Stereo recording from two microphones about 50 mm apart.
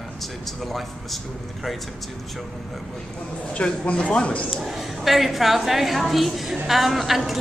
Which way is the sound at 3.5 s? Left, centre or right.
Left.